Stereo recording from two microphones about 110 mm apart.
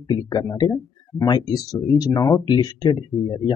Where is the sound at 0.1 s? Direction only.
35° left (ahead or behind).